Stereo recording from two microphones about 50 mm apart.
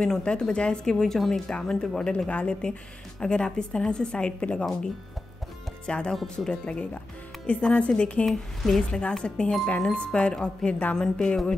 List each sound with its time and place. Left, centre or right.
0.0 s speech: centre
5.9 s speech: centre
8.3 s a woman's voice: centre
9.2 s speech: centre